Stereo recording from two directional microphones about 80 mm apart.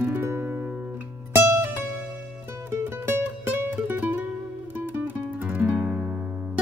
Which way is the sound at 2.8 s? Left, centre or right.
Right.